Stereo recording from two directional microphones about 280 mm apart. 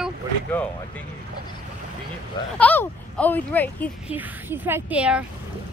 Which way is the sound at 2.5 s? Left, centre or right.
Centre.